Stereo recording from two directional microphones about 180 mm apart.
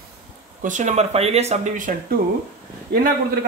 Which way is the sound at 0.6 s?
40° right (ahead or behind).